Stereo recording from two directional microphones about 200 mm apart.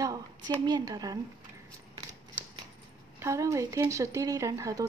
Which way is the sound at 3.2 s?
15° right (ahead or behind).